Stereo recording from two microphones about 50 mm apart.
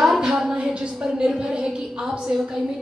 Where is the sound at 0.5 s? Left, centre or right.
Right.